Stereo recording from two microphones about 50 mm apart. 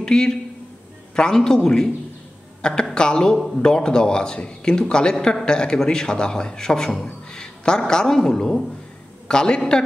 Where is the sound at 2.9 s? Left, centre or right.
Centre.